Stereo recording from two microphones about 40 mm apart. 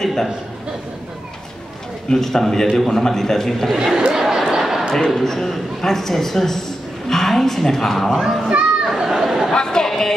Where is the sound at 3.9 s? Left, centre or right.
Centre.